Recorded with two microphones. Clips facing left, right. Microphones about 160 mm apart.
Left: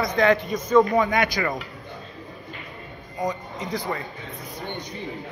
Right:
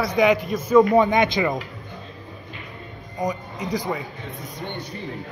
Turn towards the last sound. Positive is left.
turn(degrees=-15)  # may be behind; listen again after turning